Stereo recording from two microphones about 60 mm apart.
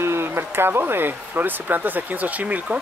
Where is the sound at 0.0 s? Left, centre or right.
Right.